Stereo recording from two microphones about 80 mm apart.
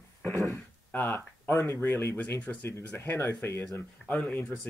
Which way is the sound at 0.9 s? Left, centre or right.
Left.